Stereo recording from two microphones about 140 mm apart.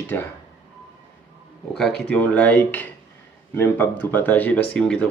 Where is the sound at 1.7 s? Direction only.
5° left (ahead or behind).